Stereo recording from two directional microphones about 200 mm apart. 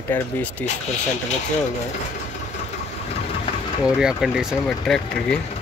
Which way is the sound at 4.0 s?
5° right (ahead or behind).